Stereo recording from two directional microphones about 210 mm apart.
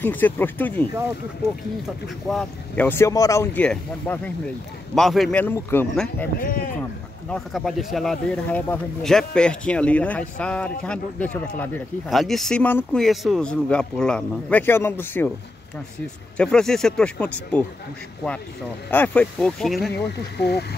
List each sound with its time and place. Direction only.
0.0 s speech: 10° left (ahead or behind)
2.2 s speech: 5° left (ahead or behind)
6.4 s speech: 40° left (ahead or behind)
6.8 s speech: 5° left (ahead or behind)
16.3 s speech: 5° left (ahead or behind)
18.9 s speech: 5° left (ahead or behind)
20.1 s speech: 50° left (ahead or behind)